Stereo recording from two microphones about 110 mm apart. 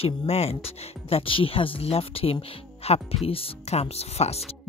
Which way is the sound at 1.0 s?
55° left (ahead or behind).